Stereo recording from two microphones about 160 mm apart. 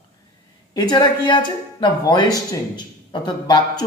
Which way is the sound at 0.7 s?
25° left (ahead or behind).